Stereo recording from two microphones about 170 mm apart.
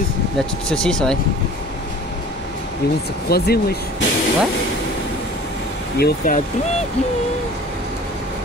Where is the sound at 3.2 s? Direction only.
65° left (ahead or behind).